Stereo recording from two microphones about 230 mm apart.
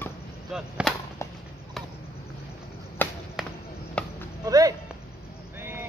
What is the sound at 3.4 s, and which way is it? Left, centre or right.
Basketball bounce, centre.